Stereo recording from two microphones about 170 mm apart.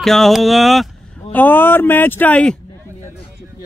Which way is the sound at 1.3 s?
10° left (ahead or behind).